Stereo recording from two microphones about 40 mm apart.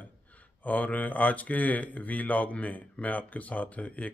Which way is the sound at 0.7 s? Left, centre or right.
Left.